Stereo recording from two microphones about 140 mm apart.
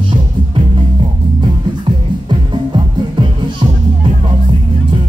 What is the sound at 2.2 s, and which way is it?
Music, 35° right (ahead or behind).